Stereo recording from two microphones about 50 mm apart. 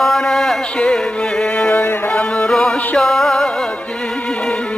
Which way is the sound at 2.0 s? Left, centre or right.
Left.